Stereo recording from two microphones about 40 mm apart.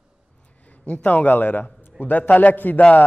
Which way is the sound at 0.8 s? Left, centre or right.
Left.